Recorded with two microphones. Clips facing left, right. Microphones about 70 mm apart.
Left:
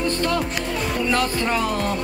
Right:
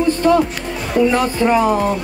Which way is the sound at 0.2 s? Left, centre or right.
Centre.